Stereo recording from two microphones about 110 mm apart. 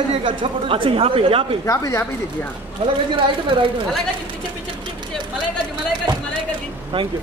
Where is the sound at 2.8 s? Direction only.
65° right (ahead or behind).